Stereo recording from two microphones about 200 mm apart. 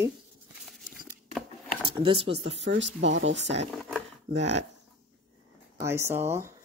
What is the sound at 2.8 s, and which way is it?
Speech, 65° right (ahead or behind).